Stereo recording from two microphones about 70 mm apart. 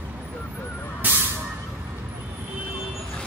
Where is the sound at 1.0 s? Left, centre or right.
Right.